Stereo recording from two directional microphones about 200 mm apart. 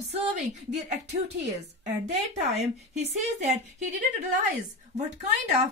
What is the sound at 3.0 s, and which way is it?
Speech, 35° right (ahead or behind).